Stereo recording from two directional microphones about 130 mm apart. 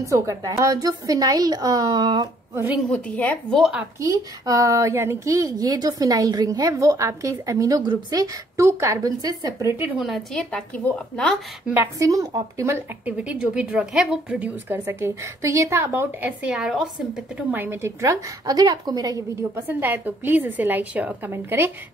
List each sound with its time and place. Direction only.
0.0 s speech: 25° right (ahead or behind)
2.9 s a woman's voice: 10° left (ahead or behind)
4.0 s speech: 25° right (ahead or behind)
9.9 s a woman's voice: centre (ahead or behind)
12.0 s speech: 25° right (ahead or behind)
13.0 s a woman's voice: 10° right (ahead or behind); by 19.6 s 25° right (ahead or behind)
19.7 s a woman's voice: 15° right (ahead or behind)